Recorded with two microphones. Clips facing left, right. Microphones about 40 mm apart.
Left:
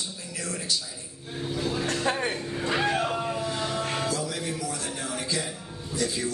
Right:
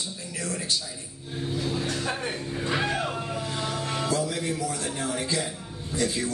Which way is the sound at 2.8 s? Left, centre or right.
Left.